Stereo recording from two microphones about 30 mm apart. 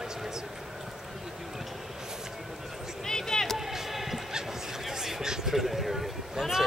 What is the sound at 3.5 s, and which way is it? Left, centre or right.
Basketball bounce, centre.